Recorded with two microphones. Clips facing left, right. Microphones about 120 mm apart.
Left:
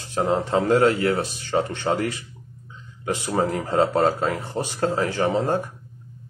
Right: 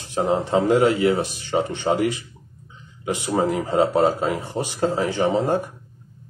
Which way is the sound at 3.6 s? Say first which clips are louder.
Right 1 dB; 10° right (ahead or behind).